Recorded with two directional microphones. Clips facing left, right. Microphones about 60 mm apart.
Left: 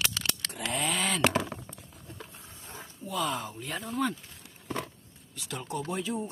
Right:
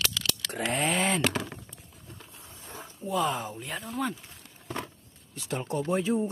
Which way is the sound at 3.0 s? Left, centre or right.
Right.